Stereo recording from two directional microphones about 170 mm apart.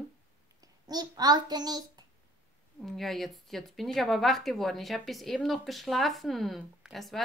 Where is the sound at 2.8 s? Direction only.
Centre (ahead or behind).